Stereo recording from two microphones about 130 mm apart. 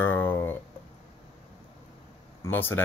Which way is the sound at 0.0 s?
15° left (ahead or behind).